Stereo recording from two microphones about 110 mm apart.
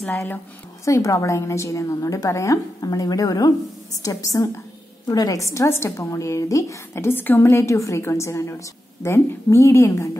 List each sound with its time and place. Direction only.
0.0 s a woman's voice: 20° left (ahead or behind)